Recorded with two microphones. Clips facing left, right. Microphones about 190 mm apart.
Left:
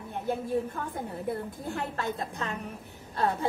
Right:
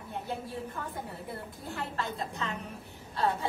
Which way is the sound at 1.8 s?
50° left (ahead or behind).